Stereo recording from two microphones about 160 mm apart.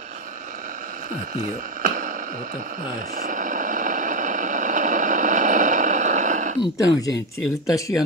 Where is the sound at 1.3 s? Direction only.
55° right (ahead or behind).